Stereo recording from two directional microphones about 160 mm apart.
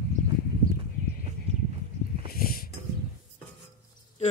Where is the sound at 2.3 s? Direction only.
65° left (ahead or behind).